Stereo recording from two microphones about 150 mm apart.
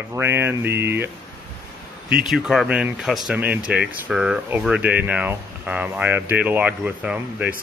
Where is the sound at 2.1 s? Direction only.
Centre (ahead or behind).